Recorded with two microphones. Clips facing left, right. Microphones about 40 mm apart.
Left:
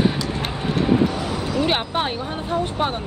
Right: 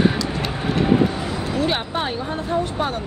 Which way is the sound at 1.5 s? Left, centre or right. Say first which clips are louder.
Left 1 dB; left.